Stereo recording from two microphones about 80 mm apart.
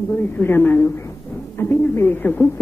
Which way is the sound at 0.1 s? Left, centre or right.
Left.